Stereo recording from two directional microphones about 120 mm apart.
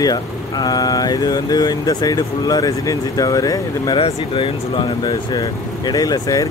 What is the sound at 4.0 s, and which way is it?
Speech, 45° left (ahead or behind).